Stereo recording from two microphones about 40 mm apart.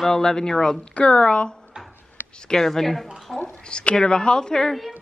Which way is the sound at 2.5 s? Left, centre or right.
Centre.